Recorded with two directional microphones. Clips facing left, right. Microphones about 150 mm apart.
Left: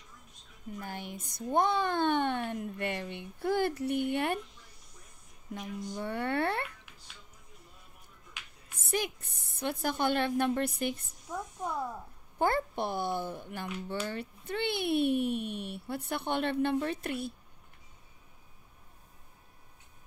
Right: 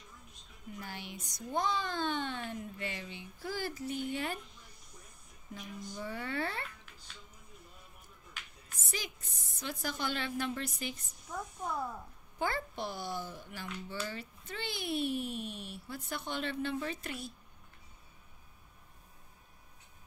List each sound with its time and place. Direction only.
0.7 s speech: 50° left (ahead or behind)
5.5 s speech: 60° left (ahead or behind)
8.8 s speech: 60° left (ahead or behind)
11.3 s speech: 15° left (ahead or behind)
12.4 s speech: 55° left (ahead or behind)